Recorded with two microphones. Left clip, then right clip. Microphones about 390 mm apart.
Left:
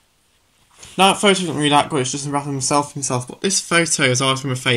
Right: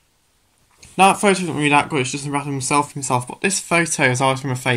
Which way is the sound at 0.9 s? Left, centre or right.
Centre.